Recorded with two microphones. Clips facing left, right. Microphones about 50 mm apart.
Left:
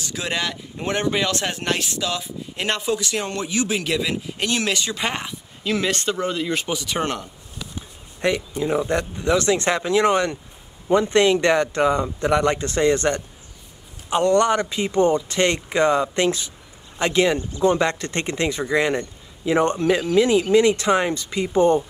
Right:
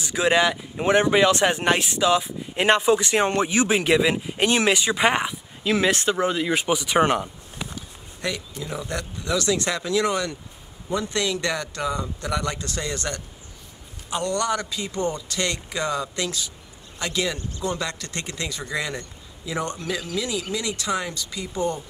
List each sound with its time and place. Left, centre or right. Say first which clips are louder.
0.0 s speech: right 6 dB; centre
7.7 s speech: left 1 dB; left